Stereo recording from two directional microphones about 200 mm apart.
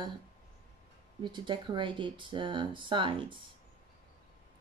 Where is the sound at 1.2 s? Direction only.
25° right (ahead or behind).